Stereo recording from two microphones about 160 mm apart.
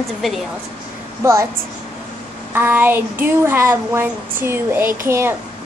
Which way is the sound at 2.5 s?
15° right (ahead or behind).